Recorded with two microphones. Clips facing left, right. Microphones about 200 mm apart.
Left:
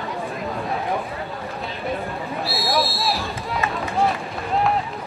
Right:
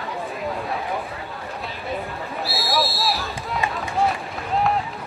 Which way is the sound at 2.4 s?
Centre (ahead or behind).